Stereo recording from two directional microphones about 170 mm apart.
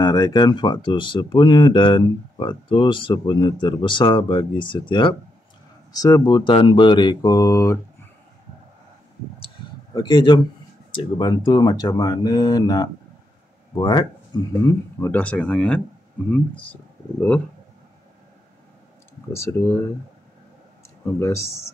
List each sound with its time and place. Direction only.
0.0 s speech: 25° left (ahead or behind)
9.9 s speech: 25° left (ahead or behind)
14.7 s speech: 15° left (ahead or behind)
19.3 s speech: 10° left (ahead or behind)